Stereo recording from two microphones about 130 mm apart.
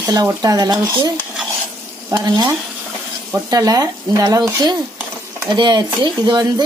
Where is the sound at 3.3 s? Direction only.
30° right (ahead or behind).